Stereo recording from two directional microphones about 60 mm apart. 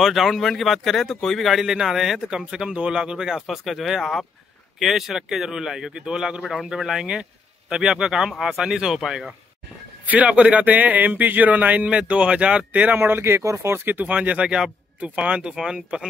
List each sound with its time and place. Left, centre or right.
0.0 s speech: centre
6.4 s speech: centre
10.0 s speech: right